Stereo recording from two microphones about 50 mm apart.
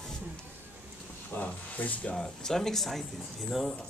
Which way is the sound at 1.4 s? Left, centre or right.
Left.